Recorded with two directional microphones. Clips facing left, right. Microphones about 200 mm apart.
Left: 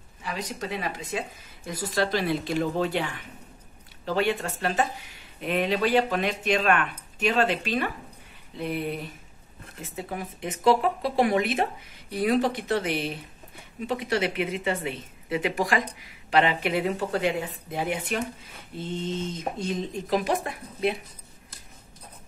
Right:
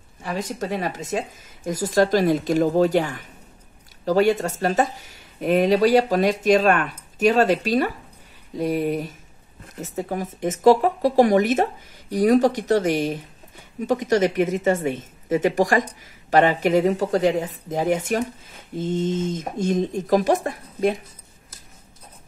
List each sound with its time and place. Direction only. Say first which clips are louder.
0.2 s a woman's voice: right 6 dB; 45° right (ahead or behind)